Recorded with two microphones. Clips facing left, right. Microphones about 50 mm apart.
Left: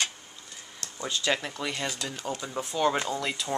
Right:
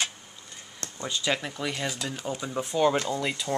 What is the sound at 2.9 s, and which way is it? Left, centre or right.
Speech, centre.